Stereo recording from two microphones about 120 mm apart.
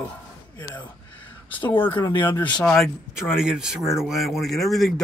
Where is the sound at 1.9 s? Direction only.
40° left (ahead or behind).